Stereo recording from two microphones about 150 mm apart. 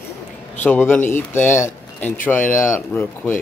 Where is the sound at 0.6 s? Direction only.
10° left (ahead or behind).